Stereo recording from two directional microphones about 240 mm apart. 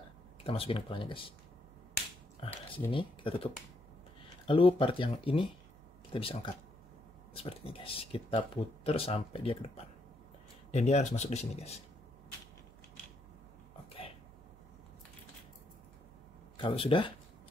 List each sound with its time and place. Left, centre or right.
0.4 s speech: left
2.9 s speech: left
4.5 s speech: left
10.7 s speech: left
16.5 s speech: left